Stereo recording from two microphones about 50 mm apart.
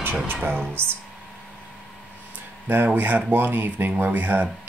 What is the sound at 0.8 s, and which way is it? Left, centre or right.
Speech, right.